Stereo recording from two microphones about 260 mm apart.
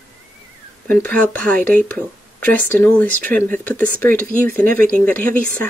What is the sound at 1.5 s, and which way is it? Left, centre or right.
Speech, centre.